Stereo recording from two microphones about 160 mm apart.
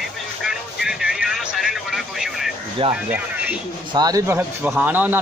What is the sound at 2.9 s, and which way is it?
Speech, 10° right (ahead or behind).